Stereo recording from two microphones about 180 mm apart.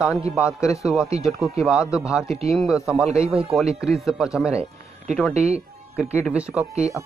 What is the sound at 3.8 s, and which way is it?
Speech, 5° right (ahead or behind).